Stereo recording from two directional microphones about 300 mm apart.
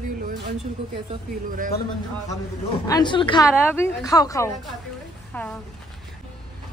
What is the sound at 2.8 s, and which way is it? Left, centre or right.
A woman's voice, centre.